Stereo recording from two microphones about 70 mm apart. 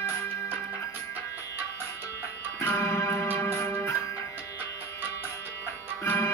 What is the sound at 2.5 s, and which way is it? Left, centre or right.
Music, left.